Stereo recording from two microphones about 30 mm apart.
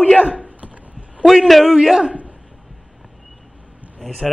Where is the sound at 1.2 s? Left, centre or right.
Centre.